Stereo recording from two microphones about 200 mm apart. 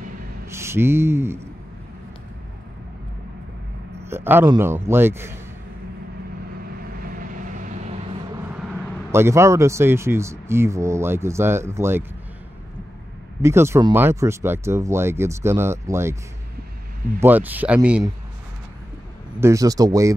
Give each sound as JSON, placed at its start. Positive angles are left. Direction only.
{"t": 0.5, "sound": "a sound", "side_deg": -15}
{"t": 4.0, "sound": "a man's voice", "side_deg": -10}
{"t": 7.0, "sound": "vehicle", "side_deg": -45}
{"t": 9.1, "sound": "speech", "side_deg": -15}
{"t": 13.4, "sound": "speech", "side_deg": -15}
{"t": 17.2, "sound": "speech", "side_deg": -10}
{"t": 19.4, "sound": "speech", "side_deg": -15}